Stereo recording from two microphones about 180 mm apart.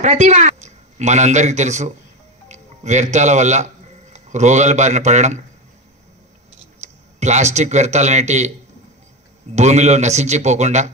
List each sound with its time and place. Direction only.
0.0 s a man's voice: 40° right (ahead or behind)
6.8 s speech: 40° right (ahead or behind)
9.6 s a man's voice: 40° right (ahead or behind)